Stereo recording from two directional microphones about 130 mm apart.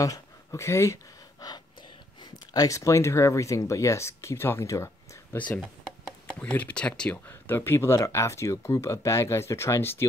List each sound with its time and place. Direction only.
0.0 s speech: 25° left (ahead or behind)
1.4 s gasp: 30° left (ahead or behind)
2.3 s speech: 30° left (ahead or behind)
5.6 s speech: 5° left (ahead or behind)